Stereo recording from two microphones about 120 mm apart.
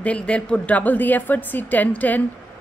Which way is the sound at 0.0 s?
10° left (ahead or behind).